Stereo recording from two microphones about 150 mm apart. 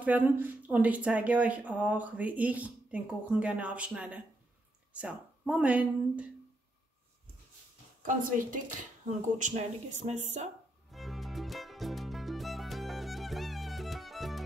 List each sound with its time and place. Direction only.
0.0 s speech: 10° right (ahead or behind)
8.0 s speech: 60° right (ahead or behind)
10.9 s music: centre (ahead or behind)